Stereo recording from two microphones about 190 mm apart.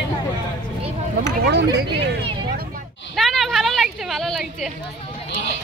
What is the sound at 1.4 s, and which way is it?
Speech, 65° right (ahead or behind).